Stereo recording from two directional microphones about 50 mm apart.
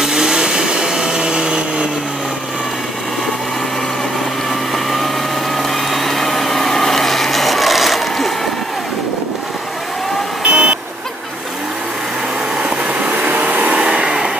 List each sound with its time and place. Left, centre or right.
0.0 s vehicle: centre
4.5 s vehicle: centre
10.4 s vehicle: centre
12.5 s vehicle: right
13.7 s vehicle: centre